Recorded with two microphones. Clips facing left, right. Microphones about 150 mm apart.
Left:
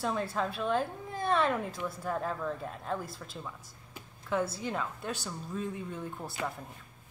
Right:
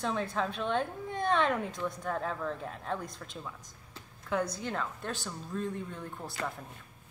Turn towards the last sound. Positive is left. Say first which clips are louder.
# left 1 dB
turn(degrees=5)  # may be behind; listen again after turning